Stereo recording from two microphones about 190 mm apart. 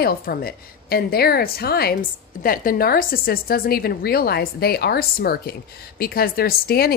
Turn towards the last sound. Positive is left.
turn(degrees=55)  # may be behind; listen again after turning